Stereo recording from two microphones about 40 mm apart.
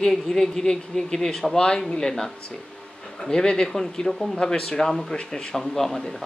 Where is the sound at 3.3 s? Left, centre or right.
Centre.